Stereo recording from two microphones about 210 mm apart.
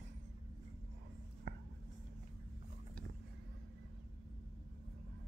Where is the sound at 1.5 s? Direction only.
65° right (ahead or behind).